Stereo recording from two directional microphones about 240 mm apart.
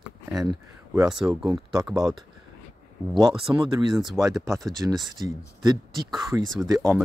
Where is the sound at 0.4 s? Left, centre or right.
Centre.